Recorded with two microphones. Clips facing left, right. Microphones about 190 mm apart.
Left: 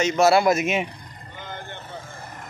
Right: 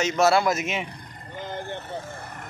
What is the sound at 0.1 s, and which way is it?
Speech, 10° left (ahead or behind).